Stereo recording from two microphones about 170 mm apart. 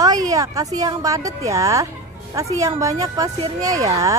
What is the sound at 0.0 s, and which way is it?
A woman's voice, 20° right (ahead or behind).